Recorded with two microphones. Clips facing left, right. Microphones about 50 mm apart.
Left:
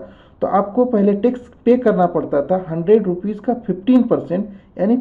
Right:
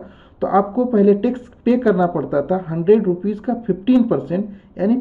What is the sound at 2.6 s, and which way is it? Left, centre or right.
Speech, centre.